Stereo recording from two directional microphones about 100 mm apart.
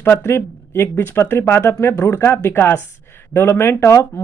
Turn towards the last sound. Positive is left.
turn(degrees=25)  # may be behind; listen again after turning